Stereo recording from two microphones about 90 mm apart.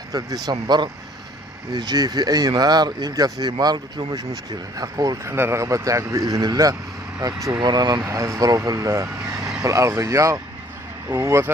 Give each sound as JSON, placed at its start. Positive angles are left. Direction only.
{"t": 0.1, "sound": "speech", "side_deg": -50}
{"t": 5.3, "sound": "speech", "side_deg": -30}